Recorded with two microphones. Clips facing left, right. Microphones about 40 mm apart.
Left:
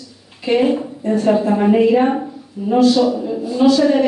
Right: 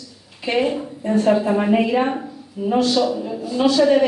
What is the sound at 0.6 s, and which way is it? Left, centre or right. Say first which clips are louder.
Speech: left 5 dB; centre.